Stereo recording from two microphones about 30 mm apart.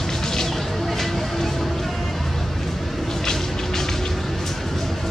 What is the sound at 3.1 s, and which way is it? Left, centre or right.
Vehicle, centre.